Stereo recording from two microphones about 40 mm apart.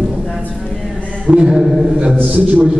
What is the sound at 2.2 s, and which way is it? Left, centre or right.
Speech, right.